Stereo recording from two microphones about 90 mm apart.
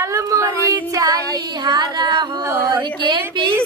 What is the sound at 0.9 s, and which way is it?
Child singing, 40° right (ahead or behind).